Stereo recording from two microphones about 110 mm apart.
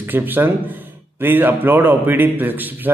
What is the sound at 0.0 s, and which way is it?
A man's voice, 15° right (ahead or behind).